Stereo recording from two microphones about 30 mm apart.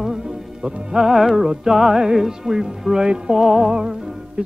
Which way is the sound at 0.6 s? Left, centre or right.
Right.